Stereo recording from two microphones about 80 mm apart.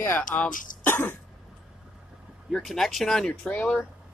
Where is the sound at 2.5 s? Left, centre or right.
Centre.